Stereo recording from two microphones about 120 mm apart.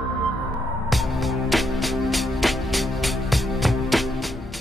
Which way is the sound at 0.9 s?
Centre (ahead or behind).